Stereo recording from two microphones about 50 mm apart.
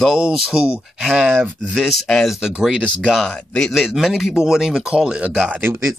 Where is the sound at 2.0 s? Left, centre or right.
Centre.